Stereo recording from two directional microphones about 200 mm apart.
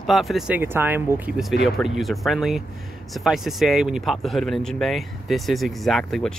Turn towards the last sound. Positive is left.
turn(degrees=0)  # may be behind; listen again after turning